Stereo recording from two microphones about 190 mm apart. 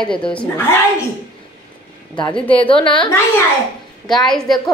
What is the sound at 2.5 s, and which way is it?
Speech, 30° left (ahead or behind).